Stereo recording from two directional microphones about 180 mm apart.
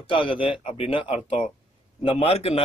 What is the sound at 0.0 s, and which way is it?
Speech, 30° left (ahead or behind).